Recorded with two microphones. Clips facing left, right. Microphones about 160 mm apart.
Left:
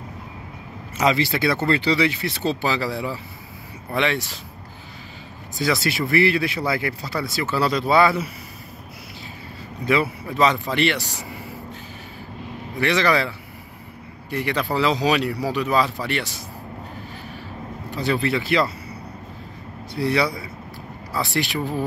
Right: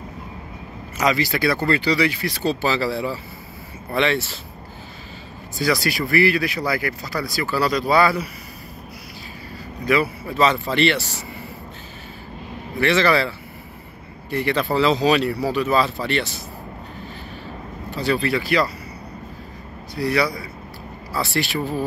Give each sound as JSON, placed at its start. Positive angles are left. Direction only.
{"t": 0.9, "sound": "speech", "side_deg": 25}
{"t": 5.6, "sound": "speech", "side_deg": 25}
{"t": 9.8, "sound": "speech", "side_deg": 20}
{"t": 12.7, "sound": "speech", "side_deg": 15}
{"t": 14.3, "sound": "speech", "side_deg": 15}
{"t": 17.9, "sound": "speech", "side_deg": 20}
{"t": 20.0, "sound": "speech", "side_deg": 25}